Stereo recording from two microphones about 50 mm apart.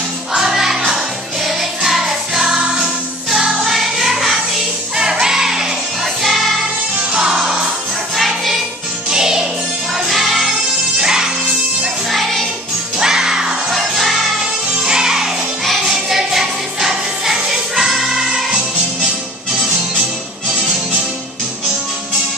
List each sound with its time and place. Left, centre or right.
0.3 s music: centre
6.2 s music: centre
7.1 s music: centre
9.1 s music: centre
9.9 s music: centre
11.0 s music: centre
12.1 s music: centre
13.0 s music: centre
13.7 s music: centre
14.8 s music: centre